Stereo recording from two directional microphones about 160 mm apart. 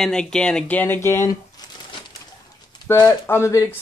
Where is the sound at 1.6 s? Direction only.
25° left (ahead or behind).